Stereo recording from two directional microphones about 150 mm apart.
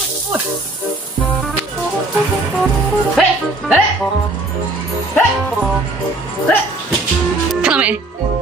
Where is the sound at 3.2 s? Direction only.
5° right (ahead or behind).